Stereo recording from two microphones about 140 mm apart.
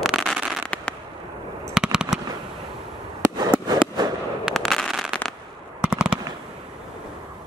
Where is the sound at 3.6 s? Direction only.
30° right (ahead or behind).